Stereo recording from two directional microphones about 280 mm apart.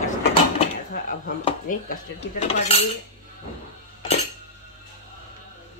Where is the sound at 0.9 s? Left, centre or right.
Left.